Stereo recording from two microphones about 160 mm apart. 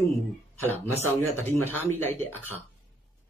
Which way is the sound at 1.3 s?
15° left (ahead or behind).